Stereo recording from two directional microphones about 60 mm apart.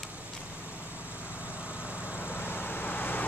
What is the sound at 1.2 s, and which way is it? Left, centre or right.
Vehicle, left.